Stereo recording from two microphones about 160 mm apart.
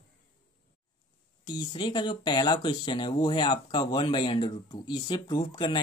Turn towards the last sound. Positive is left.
turn(degrees=25)  # may be behind; listen again after turning